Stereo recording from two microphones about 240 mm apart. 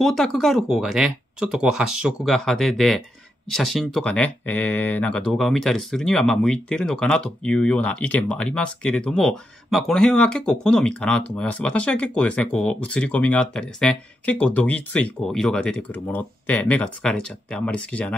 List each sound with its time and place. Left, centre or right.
0.0 s speech: centre